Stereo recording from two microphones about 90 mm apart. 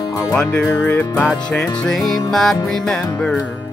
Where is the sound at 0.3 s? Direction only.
10° left (ahead or behind).